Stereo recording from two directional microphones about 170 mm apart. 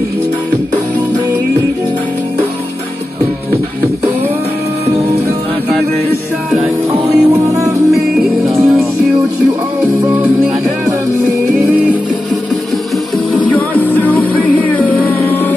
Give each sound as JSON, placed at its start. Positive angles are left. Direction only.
{"t": 4.8, "sound": "music", "side_deg": -40}
{"t": 6.6, "sound": "music", "side_deg": -20}
{"t": 8.5, "sound": "music", "side_deg": 0}
{"t": 13.3, "sound": "music", "side_deg": 10}